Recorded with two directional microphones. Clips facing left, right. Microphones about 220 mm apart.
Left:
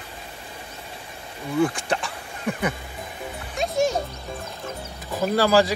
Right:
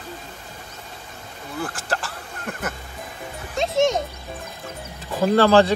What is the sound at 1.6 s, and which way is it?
Speech, 5° right (ahead or behind).